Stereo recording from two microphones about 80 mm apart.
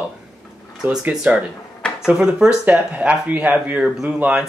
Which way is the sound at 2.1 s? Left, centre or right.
Centre.